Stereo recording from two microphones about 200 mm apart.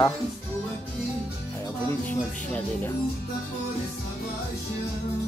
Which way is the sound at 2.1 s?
10° left (ahead or behind).